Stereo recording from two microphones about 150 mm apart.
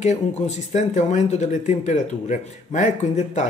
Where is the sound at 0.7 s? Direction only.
50° left (ahead or behind).